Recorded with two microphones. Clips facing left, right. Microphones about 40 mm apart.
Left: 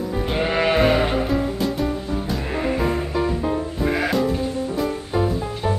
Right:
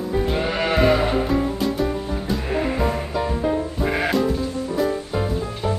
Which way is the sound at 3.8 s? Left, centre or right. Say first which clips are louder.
Left 2 dB; centre.